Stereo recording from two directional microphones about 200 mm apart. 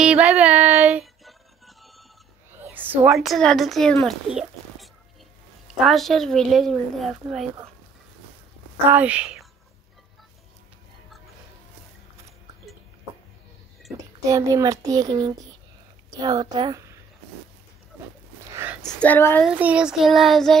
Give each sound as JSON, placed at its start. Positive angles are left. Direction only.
{"t": 0.0, "sound": "music", "side_deg": -5}
{"t": 2.6, "sound": "a woman's voice", "side_deg": -10}
{"t": 8.8, "sound": "a child's voice", "side_deg": -10}
{"t": 14.2, "sound": "a child's voice", "side_deg": -15}
{"t": 18.5, "sound": "a sound", "side_deg": -10}
{"t": 18.9, "sound": "speech", "side_deg": 10}
{"t": 19.4, "sound": "a woman's voice", "side_deg": -5}